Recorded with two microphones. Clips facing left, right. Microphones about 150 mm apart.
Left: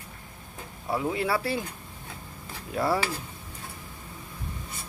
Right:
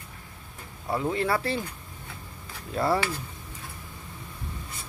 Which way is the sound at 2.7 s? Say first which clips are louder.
Right 1 dB; 10° left (ahead or behind).